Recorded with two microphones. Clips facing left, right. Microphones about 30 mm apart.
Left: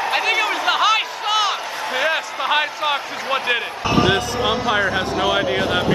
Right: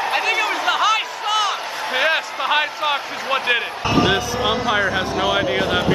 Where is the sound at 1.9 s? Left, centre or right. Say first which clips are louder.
Right 2 dB; centre.